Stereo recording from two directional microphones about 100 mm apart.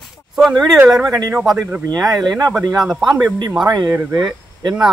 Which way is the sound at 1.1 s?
35° right (ahead or behind).